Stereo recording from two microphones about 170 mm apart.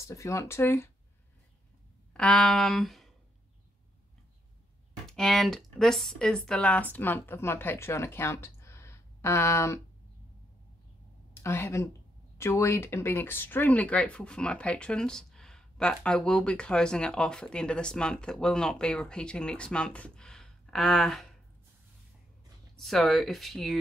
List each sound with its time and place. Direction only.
0.0 s speech: 20° left (ahead or behind)
2.1 s speech: 5° left (ahead or behind)
5.0 s speech: 5° left (ahead or behind)
11.4 s speech: 15° left (ahead or behind)
22.8 s speech: centre (ahead or behind)